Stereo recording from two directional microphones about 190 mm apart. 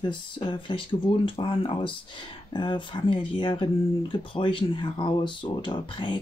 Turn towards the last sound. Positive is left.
turn(degrees=25)  # may be behind; listen again after turning